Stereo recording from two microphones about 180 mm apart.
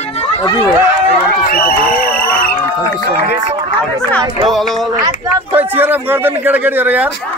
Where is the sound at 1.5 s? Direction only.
55° left (ahead or behind).